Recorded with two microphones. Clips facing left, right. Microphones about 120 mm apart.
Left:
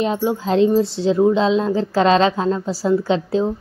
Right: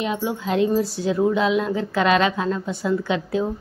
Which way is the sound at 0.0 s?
30° left (ahead or behind).